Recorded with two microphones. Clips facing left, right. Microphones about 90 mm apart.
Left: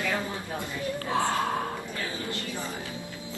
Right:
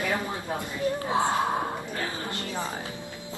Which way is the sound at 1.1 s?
20° right (ahead or behind).